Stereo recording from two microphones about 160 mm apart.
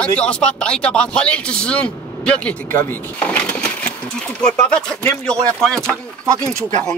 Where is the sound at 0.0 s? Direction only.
5° left (ahead or behind).